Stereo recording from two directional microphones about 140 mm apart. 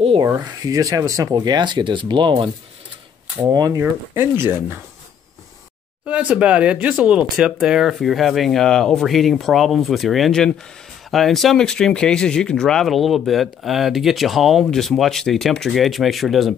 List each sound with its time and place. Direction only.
0.2 s speech: 25° right (ahead or behind)
6.0 s speech: 10° right (ahead or behind)